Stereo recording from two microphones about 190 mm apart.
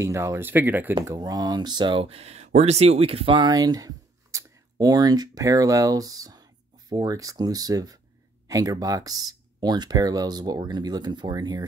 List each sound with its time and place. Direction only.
0.0 s speech: 15° right (ahead or behind)